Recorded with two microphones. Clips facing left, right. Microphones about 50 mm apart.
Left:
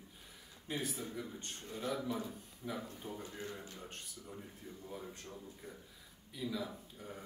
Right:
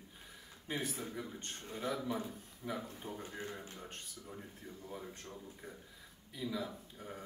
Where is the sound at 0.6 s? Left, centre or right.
Right.